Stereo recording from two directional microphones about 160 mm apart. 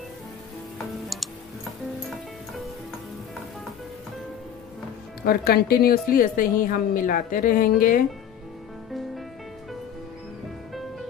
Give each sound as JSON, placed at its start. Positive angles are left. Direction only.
{"t": 0.9, "sound": "music", "side_deg": 0}
{"t": 5.2, "sound": "a woman's voice", "side_deg": 75}